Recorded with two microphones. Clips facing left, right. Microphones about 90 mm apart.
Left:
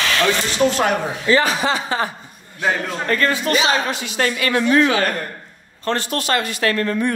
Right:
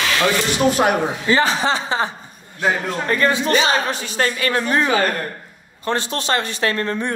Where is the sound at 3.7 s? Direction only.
40° right (ahead or behind).